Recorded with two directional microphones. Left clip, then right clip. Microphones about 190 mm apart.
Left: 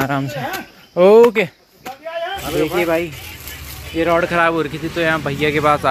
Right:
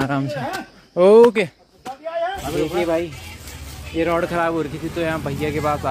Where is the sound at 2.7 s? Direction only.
10° left (ahead or behind).